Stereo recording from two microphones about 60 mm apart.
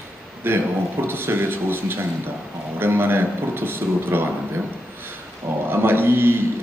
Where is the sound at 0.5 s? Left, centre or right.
Right.